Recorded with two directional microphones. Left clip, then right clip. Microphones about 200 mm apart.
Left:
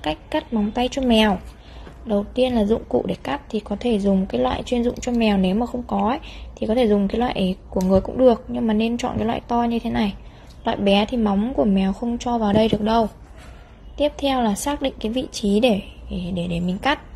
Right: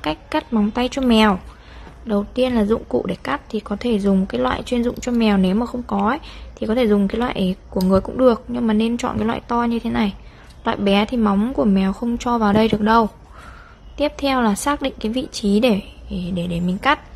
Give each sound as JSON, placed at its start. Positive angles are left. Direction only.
{"t": 0.0, "sound": "a woman's voice", "side_deg": -15}
{"t": 14.1, "sound": "a woman's voice", "side_deg": -15}